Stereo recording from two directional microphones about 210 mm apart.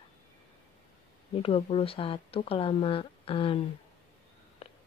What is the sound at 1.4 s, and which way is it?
Speech, 25° left (ahead or behind).